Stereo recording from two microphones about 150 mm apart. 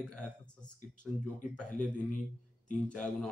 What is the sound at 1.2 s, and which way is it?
Speech, 10° left (ahead or behind).